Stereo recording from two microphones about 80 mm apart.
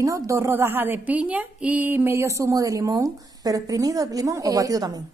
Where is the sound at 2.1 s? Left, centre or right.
Right.